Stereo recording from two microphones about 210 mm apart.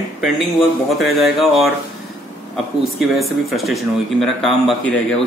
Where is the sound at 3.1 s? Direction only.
Centre (ahead or behind).